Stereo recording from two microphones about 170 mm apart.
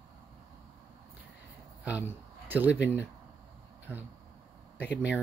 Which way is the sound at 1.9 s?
10° right (ahead or behind).